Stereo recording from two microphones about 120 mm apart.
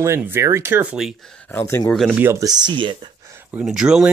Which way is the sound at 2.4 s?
40° right (ahead or behind).